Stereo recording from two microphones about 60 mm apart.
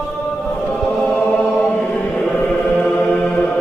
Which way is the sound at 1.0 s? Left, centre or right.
Left.